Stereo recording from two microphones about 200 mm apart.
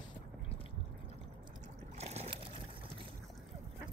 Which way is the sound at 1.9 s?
30° right (ahead or behind).